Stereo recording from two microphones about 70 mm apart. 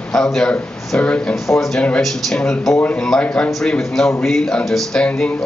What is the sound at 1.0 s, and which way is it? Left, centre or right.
Speech, centre.